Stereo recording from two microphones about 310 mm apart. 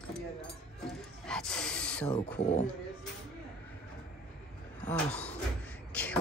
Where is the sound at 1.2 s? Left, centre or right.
Centre.